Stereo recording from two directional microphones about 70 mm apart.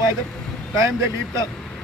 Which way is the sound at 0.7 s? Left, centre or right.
Right.